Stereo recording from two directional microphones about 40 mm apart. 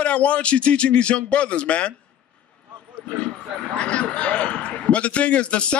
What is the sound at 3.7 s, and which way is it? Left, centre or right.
A man's voice, left.